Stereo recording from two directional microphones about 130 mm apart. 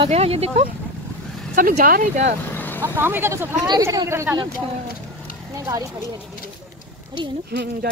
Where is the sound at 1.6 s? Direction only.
90° right.